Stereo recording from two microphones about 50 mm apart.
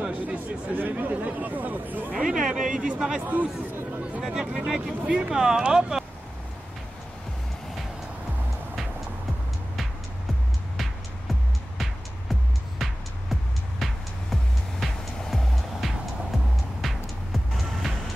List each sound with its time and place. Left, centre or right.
0.1 s speech: right
2.1 s speech: centre
3.2 s speech: right
4.2 s speech: centre
11.8 s music: centre